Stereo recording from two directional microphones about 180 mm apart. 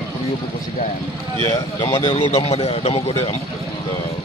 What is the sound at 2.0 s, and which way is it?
A man's voice, 35° left (ahead or behind).